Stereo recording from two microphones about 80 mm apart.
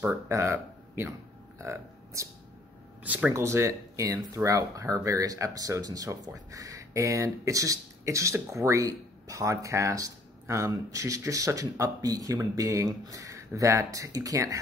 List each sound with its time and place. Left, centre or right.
0.0 s speech: right
3.0 s speech: centre
3.3 s speech: right